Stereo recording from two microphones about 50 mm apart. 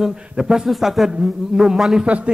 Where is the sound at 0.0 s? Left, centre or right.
Centre.